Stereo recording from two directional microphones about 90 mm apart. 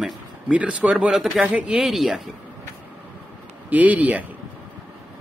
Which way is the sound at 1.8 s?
5° right (ahead or behind).